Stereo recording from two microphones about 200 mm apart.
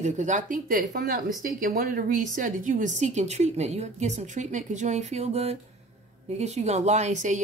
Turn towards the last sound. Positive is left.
turn(degrees=-35)  # may be behind; listen again after turning